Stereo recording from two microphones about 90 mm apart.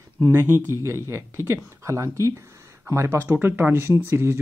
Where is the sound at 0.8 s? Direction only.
30° right (ahead or behind).